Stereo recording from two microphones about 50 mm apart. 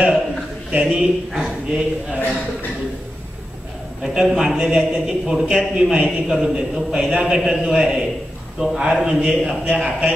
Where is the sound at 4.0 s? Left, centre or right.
Centre.